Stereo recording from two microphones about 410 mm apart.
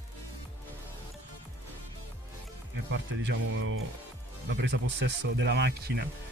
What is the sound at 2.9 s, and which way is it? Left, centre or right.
Speech, right.